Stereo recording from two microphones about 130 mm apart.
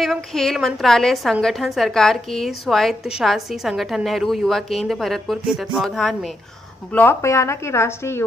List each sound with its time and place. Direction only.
0.0 s a woman's voice: centre (ahead or behind)
6.9 s a woman's voice: 10° left (ahead or behind)